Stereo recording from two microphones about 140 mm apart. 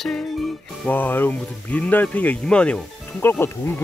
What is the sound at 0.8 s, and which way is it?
Speech, 15° left (ahead or behind).